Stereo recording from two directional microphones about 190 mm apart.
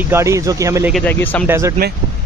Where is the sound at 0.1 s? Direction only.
15° right (ahead or behind).